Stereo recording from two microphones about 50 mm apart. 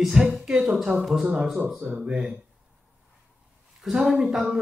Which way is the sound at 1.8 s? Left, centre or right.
Right.